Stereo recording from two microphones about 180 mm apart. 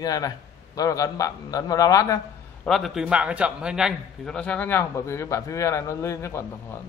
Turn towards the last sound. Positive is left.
turn(degrees=15)  # may be behind; listen again after turning